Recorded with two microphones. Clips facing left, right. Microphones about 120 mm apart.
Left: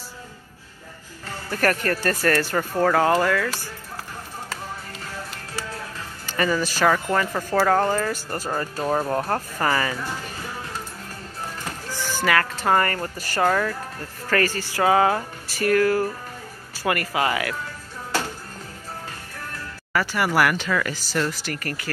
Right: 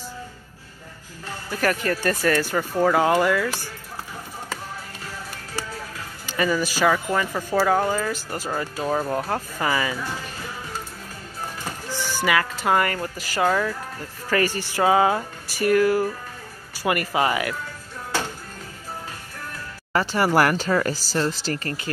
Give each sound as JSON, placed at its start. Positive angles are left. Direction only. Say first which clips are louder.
{"t": 1.5, "sound": "music", "louder": "left 1 dB", "side_deg": -5}
{"t": 6.2, "sound": "speech", "louder": "even", "side_deg": -10}
{"t": 12.3, "sound": "music", "louder": "left 1 dB", "side_deg": -10}
{"t": 13.3, "sound": "speech", "louder": "even", "side_deg": -5}
{"t": 14.3, "sound": "music", "louder": "even", "side_deg": -15}
{"t": 16.8, "sound": "speech", "louder": "right 1 dB", "side_deg": -20}
{"t": 19.9, "sound": "speech", "louder": "right 2 dB", "side_deg": -25}